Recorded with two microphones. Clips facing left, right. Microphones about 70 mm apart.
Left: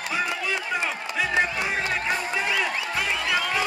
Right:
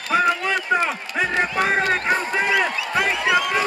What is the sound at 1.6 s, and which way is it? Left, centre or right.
Run, right.